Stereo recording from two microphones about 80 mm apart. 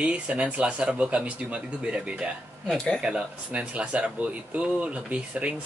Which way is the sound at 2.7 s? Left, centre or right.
Centre.